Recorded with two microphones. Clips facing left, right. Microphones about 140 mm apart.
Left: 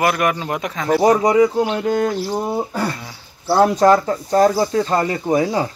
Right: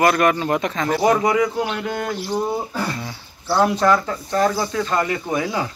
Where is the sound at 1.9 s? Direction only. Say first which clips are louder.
Left 7 dB; 45° left (ahead or behind).